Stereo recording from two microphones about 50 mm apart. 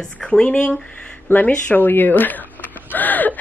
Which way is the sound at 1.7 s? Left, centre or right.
Left.